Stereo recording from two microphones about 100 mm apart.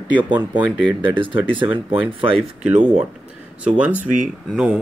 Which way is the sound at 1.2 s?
55° right (ahead or behind).